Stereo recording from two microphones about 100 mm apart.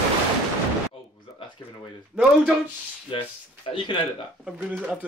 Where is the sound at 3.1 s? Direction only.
60° left (ahead or behind).